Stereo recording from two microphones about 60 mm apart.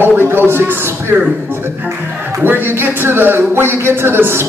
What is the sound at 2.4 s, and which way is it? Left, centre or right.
A man's voice, right.